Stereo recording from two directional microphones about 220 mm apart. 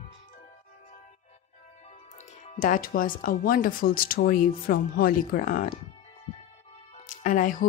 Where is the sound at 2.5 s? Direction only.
35° left (ahead or behind).